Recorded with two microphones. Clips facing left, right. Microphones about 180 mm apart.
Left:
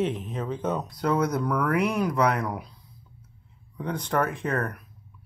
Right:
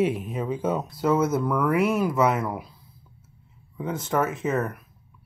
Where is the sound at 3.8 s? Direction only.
5° right (ahead or behind).